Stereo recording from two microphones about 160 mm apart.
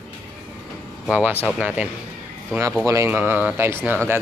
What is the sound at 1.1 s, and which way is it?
Speech, 10° right (ahead or behind).